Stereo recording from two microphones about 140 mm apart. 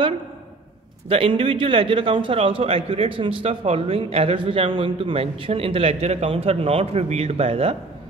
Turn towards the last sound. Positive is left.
turn(degrees=-45)  # may be behind; listen again after turning